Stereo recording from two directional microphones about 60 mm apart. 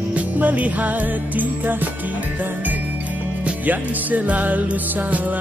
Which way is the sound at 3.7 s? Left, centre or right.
Right.